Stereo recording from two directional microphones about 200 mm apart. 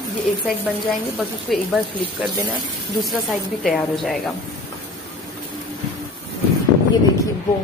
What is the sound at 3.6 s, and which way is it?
Speech, centre (ahead or behind).